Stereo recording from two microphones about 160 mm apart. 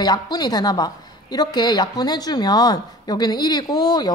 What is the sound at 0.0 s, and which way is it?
Speech, 25° left (ahead or behind).